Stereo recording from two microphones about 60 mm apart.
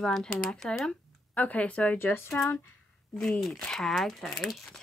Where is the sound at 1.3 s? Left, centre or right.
Left.